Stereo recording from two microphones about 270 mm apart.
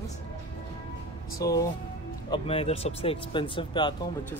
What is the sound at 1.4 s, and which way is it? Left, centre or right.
Speech, centre.